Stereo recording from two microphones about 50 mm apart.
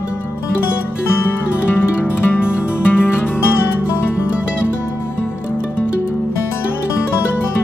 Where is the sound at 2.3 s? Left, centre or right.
Left.